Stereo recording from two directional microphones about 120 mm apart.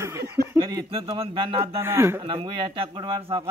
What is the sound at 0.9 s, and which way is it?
Speech, 50° right (ahead or behind).